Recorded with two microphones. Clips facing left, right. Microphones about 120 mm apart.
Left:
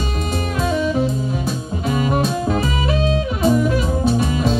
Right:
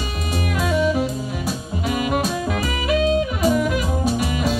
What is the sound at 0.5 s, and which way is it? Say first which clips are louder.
Music: even; 30° left (ahead or behind).